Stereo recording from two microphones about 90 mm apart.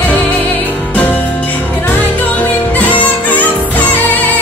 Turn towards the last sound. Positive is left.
turn(degrees=20)  # may be behind; listen again after turning